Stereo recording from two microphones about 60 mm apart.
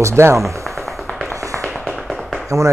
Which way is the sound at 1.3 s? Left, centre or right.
Right.